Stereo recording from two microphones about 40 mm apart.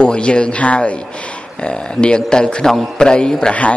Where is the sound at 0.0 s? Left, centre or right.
Left.